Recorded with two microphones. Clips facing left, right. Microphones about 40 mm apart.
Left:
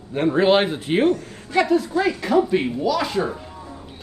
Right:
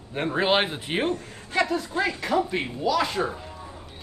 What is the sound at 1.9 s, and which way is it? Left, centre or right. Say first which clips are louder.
Speech: left 2 dB; right.